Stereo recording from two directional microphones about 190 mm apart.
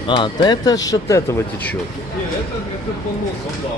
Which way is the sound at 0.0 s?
25° left (ahead or behind).